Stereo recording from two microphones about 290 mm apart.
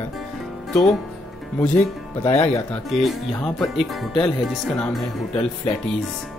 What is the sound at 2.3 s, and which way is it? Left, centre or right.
Speech, left.